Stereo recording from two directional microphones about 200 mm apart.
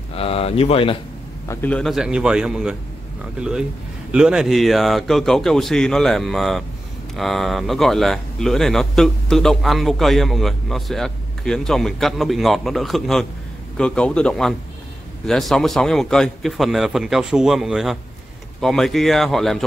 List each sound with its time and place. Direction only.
0.1 s speech: 30° left (ahead or behind)
1.5 s speech: 10° left (ahead or behind)